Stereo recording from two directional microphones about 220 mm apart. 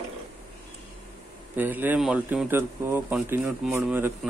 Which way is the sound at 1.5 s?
10° right (ahead or behind).